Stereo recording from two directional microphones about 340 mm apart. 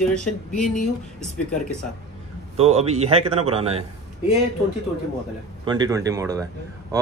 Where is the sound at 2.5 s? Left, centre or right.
Centre.